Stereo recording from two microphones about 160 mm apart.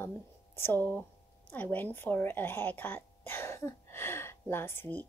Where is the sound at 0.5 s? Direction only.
15° left (ahead or behind).